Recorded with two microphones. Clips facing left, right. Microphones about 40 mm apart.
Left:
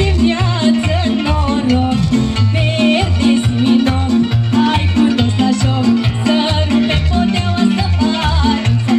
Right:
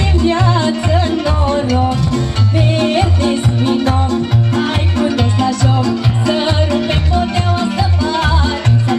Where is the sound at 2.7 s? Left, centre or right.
Left.